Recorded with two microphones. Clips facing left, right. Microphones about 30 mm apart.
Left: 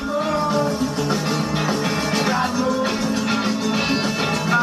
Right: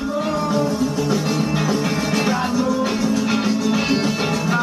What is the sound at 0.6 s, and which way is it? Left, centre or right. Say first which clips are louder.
Music: right 1 dB; left.